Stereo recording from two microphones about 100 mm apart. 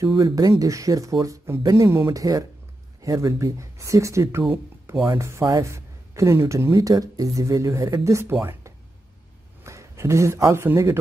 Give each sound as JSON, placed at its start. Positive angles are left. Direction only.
{"t": 0.0, "sound": "a man's voice", "side_deg": -40}